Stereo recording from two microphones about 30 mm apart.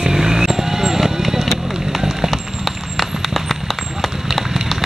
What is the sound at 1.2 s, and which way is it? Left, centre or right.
Music, centre.